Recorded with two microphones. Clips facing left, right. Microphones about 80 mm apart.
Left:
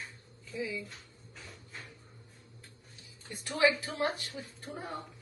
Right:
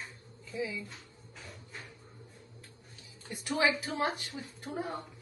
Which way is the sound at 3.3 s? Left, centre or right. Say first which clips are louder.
Left 1 dB; right.